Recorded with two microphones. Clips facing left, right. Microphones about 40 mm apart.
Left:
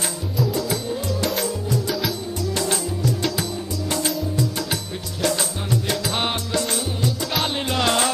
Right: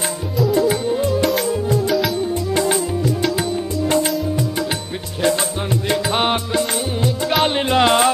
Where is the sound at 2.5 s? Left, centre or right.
Right.